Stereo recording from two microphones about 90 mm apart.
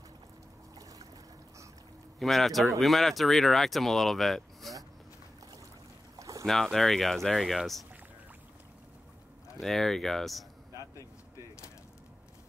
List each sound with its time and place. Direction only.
2.1 s speech: centre (ahead or behind)
6.1 s boat: 40° right (ahead or behind)
6.4 s speech: 5° left (ahead or behind)
9.6 s speech: 5° left (ahead or behind)